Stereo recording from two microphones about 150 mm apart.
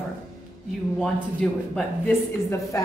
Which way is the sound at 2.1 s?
15° left (ahead or behind).